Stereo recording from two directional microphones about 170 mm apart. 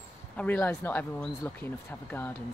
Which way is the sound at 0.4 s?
10° left (ahead or behind).